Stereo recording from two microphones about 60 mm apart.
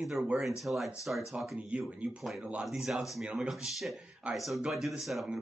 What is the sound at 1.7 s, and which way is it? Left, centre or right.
Speech, right.